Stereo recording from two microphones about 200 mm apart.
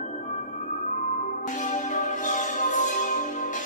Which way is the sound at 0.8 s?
40° left (ahead or behind).